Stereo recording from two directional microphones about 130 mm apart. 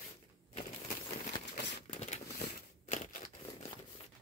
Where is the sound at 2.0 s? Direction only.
65° left (ahead or behind).